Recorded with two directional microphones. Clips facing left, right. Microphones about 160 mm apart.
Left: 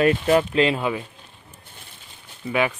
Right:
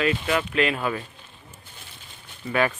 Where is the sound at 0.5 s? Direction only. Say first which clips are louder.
Left 4 dB; 30° left (ahead or behind).